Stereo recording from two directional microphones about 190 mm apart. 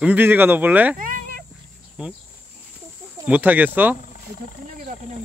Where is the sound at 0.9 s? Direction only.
45° right (ahead or behind).